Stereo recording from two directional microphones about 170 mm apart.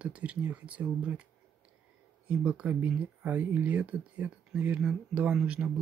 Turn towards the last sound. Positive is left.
turn(degrees=-5)  # may be behind; listen again after turning